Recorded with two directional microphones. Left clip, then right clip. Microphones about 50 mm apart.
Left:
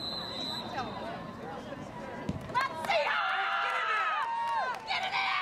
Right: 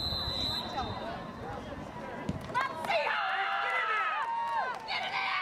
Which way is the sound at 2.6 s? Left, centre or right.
Left.